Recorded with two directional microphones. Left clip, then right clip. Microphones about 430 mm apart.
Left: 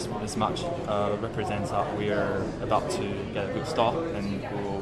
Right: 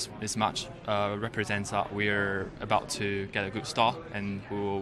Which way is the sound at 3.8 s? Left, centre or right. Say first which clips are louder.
Left 1 dB; right.